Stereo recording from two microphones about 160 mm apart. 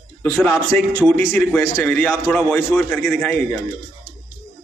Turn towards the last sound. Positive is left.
turn(degrees=5)  # may be behind; listen again after turning